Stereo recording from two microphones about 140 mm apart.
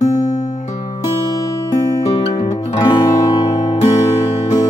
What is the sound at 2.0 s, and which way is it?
Music, 50° left (ahead or behind).